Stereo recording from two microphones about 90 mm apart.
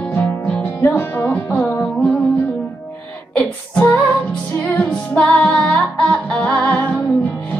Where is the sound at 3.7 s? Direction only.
15° left (ahead or behind).